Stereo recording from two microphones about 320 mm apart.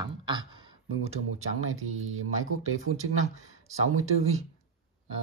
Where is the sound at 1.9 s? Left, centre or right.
Right.